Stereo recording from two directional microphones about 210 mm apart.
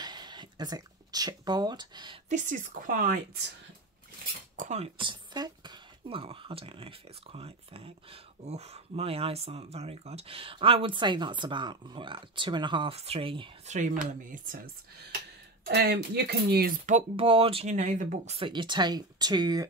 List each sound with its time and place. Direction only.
0.0 s a sound: 20° right (ahead or behind)
2.2 s a woman's voice: 35° right (ahead or behind)
4.6 s speech: 30° right (ahead or behind)
14.3 s a woman's voice: 40° right (ahead or behind)
15.6 s speech: 50° right (ahead or behind); by 19.6 s 20° right (ahead or behind)